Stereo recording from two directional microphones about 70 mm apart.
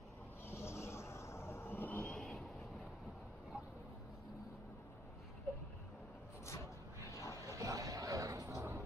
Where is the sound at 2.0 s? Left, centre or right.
Centre.